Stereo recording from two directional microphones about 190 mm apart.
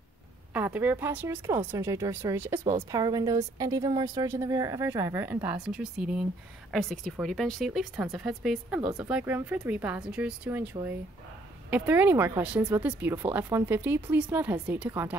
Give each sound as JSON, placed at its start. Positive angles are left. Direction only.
{"t": 0.5, "sound": "speech", "side_deg": -10}